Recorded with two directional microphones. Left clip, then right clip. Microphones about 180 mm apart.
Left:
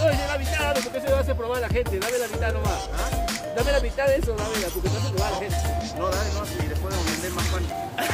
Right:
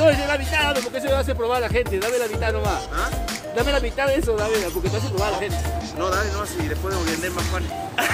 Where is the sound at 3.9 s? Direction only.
30° right (ahead or behind).